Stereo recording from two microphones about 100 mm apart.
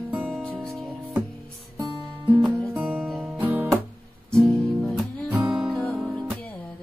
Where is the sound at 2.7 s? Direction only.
15° right (ahead or behind).